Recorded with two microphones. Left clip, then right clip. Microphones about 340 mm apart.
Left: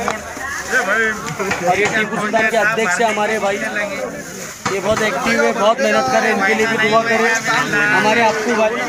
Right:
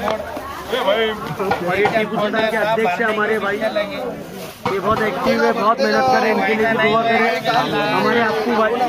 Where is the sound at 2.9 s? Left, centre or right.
Centre.